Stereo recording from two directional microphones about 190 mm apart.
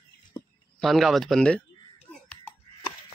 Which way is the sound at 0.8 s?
Centre (ahead or behind).